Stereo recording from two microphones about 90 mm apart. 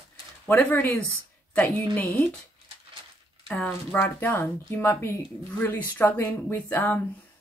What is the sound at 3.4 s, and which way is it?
Speech, 10° left (ahead or behind).